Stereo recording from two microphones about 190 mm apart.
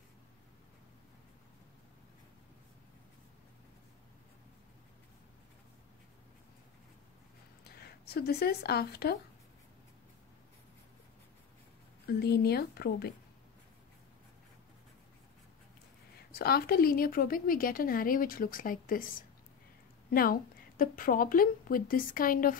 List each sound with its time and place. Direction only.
7.6 s speech: 55° left (ahead or behind)
12.1 s speech: 55° left (ahead or behind)
16.3 s a woman's voice: 55° left (ahead or behind)